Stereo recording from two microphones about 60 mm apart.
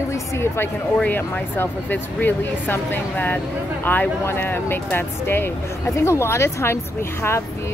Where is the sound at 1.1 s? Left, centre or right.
Left.